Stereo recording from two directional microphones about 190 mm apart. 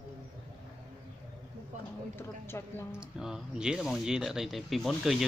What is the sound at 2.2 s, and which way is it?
Speech, 10° left (ahead or behind).